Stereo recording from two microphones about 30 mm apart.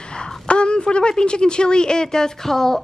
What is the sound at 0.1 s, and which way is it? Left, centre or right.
A woman's voice, left.